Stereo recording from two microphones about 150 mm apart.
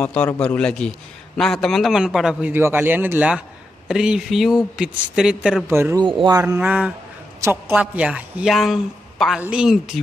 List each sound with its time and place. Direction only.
0.0 s a man's voice: 10° left (ahead or behind)
5.7 s speech: 15° right (ahead or behind)
5.9 s speech: 30° right (ahead or behind)
6.6 s a man's voice: 10° right (ahead or behind)